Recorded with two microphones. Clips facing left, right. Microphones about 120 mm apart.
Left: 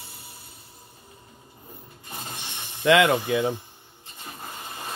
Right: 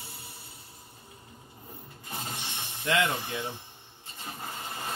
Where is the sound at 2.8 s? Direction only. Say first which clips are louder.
Left 9 dB; 90° left.